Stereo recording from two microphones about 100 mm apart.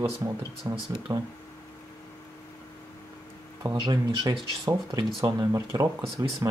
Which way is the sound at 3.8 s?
45° right (ahead or behind).